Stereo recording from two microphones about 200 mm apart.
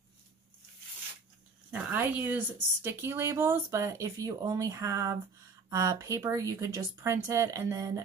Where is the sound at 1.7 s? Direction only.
5° right (ahead or behind).